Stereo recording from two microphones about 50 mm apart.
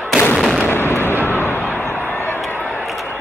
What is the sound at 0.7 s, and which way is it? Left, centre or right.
Gunshot, left.